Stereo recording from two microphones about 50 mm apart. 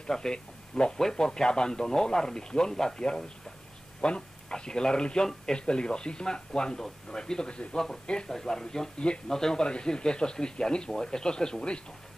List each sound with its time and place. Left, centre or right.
0.0 s speech: centre